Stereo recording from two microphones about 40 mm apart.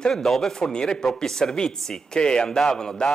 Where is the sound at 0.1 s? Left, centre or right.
Centre.